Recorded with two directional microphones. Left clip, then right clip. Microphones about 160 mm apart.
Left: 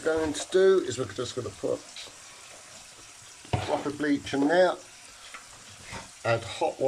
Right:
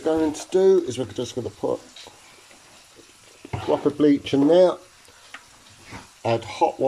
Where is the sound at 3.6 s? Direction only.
15° right (ahead or behind).